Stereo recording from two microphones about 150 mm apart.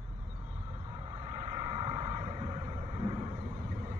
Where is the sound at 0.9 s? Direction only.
35° right (ahead or behind).